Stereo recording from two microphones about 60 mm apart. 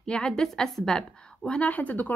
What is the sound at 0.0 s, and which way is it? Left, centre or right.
A woman's voice, centre.